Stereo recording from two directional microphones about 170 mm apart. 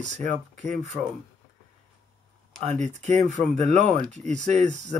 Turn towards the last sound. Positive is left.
turn(degrees=-45)  # may be behind; listen again after turning